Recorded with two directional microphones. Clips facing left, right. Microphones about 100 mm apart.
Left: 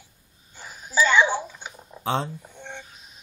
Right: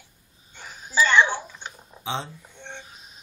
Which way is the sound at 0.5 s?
5° left (ahead or behind).